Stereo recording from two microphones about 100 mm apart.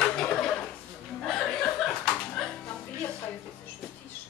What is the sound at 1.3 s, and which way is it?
Slap, 5° left (ahead or behind).